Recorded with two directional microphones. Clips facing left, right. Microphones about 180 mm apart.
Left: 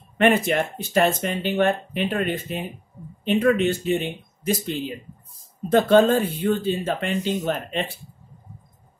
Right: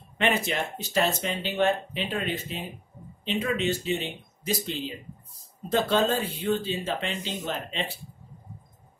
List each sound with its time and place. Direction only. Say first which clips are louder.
0.2 s speech: left 7 dB; 50° left (ahead or behind)